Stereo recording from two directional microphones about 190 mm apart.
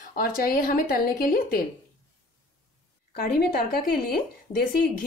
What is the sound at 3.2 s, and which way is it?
Speech, 50° left (ahead or behind).